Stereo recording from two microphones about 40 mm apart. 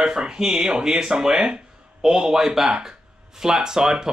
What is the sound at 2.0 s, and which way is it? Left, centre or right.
Speech, centre.